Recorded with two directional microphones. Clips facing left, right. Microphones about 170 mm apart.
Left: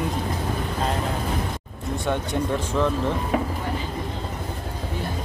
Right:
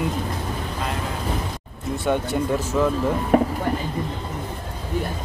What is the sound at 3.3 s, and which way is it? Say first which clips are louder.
Speech: right 9 dB; 50° right (ahead or behind).